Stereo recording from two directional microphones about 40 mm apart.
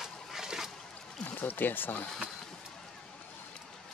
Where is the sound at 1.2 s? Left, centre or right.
Left.